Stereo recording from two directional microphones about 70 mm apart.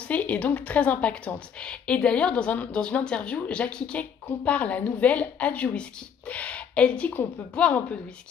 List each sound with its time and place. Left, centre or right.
0.1 s speech: left